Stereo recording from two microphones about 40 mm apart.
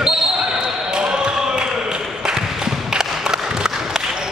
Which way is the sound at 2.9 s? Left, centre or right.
Centre.